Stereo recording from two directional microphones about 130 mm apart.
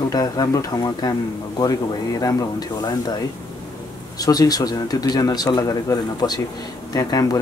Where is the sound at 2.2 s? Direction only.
30° left (ahead or behind).